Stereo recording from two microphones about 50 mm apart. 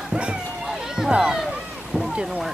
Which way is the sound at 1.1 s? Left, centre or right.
Centre.